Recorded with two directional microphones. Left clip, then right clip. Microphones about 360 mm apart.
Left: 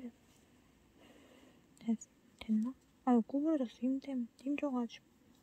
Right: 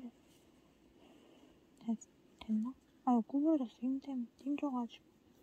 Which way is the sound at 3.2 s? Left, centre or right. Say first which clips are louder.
Even; left.